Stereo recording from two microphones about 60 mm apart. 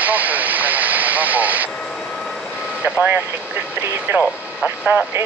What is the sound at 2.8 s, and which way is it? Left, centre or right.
Speech, right.